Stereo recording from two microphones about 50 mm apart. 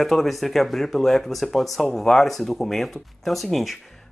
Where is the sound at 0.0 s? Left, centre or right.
Centre.